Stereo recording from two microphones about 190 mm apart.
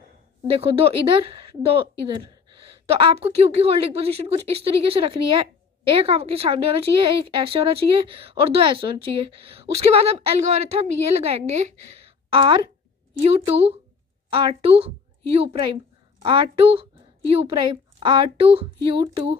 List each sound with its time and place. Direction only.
0.5 s a woman's voice: 30° right (ahead or behind)